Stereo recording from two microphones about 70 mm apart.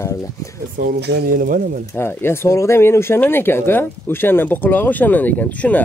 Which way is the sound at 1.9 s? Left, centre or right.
Left.